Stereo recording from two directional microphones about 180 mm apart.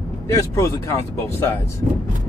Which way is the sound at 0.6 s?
20° left (ahead or behind).